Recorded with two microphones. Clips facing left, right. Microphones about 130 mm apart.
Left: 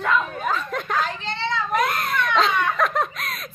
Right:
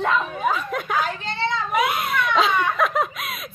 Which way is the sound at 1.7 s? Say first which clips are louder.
Even; 5° right (ahead or behind).